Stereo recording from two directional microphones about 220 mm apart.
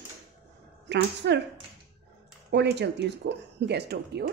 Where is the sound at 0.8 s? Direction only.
50° right (ahead or behind).